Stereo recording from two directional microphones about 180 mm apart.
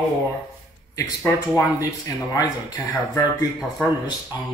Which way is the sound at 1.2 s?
20° left (ahead or behind).